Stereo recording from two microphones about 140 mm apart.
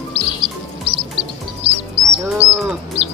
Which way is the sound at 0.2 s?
35° right (ahead or behind).